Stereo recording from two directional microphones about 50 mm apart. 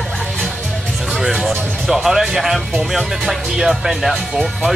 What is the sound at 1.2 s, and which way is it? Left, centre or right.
Speech, centre.